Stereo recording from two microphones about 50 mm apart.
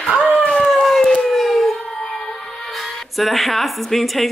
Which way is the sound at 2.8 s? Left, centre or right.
Centre.